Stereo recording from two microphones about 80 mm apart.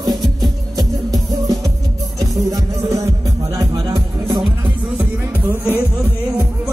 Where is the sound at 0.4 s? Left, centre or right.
Right.